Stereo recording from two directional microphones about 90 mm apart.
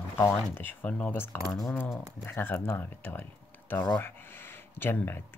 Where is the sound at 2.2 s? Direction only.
25° left (ahead or behind).